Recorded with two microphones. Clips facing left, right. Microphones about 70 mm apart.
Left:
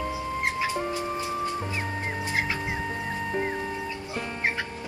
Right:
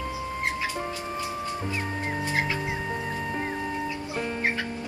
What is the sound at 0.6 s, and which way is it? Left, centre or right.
Music, left.